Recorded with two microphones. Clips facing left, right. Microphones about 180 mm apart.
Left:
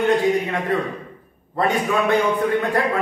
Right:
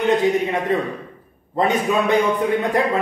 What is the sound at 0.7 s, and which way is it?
A man's voice, 20° right (ahead or behind).